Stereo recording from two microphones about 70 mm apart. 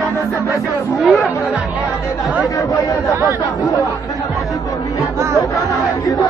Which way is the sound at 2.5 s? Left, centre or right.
Left.